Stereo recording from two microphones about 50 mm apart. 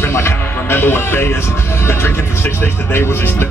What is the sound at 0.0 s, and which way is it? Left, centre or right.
Speech, left.